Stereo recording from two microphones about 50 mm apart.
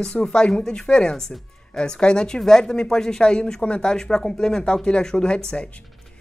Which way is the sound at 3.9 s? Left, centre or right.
Centre.